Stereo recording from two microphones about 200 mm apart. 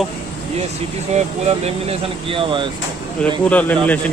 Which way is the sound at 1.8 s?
25° right (ahead or behind).